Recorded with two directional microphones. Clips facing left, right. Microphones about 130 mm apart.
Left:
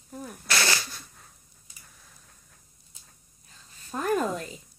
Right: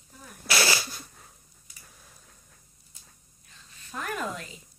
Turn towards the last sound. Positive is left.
turn(degrees=40)  # may be behind; listen again after turning